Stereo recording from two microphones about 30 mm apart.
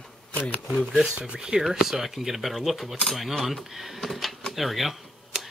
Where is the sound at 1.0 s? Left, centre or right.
Right; by 5.0 s centre.